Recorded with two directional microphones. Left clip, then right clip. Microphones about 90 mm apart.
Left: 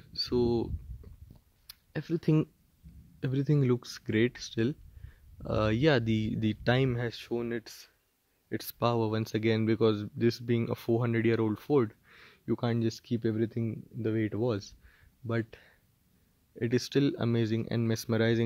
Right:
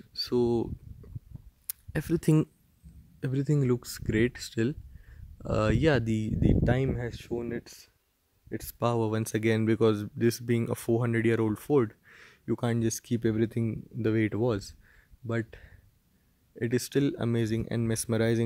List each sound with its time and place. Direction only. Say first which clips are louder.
0.1 s a sound: right 2 dB; 40° right (ahead or behind)
1.7 s speech: right 4 dB; 40° right (ahead or behind)
3.2 s speech: even; centre (ahead or behind)
6.4 s speech: right 1 dB; 25° left (ahead or behind)
8.7 s speech: right 1 dB; 10° right (ahead or behind)
12.8 s speech: right 3 dB; 25° right (ahead or behind); by 14.3 s 45° right (ahead or behind)
14.3 s speech: right 2 dB; 30° right (ahead or behind)
14.9 s a sound: even; centre (ahead or behind)
16.5 s speech: right 1 dB; centre (ahead or behind)